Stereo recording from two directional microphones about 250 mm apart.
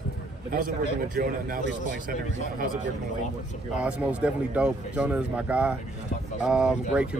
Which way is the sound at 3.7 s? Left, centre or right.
Centre.